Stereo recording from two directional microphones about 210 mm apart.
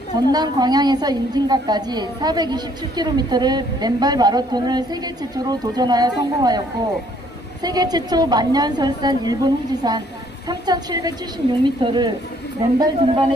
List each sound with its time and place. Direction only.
0.1 s a woman's voice: 20° right (ahead or behind)
7.6 s a woman's voice: 20° right (ahead or behind)